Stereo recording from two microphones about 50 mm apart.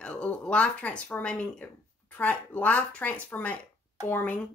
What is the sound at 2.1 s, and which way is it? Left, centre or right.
Speech, left.